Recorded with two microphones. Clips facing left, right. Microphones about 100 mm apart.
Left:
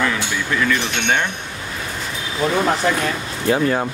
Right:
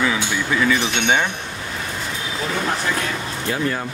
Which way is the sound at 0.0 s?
5° right (ahead or behind).